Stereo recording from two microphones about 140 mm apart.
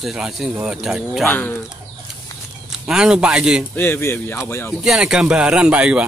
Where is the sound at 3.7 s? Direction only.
15° left (ahead or behind).